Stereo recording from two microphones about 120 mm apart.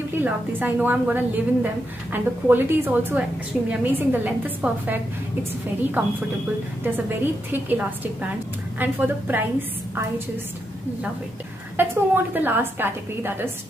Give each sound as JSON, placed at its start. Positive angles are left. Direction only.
{"t": 0.2, "sound": "a woman's voice", "side_deg": -15}
{"t": 7.5, "sound": "a woman's voice", "side_deg": -15}
{"t": 11.7, "sound": "a woman's voice", "side_deg": -15}